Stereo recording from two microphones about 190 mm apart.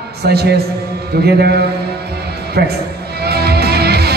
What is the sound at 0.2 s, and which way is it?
Speech, 55° right (ahead or behind).